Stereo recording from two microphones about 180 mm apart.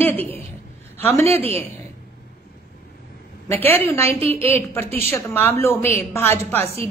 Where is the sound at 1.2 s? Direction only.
35° right (ahead or behind).